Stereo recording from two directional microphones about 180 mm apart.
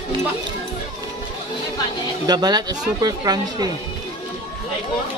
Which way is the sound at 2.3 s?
20° right (ahead or behind).